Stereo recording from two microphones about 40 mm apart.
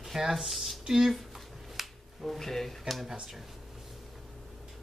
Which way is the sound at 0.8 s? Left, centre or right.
Centre.